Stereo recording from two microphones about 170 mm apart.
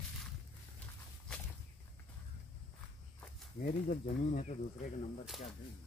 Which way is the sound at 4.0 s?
50° left (ahead or behind).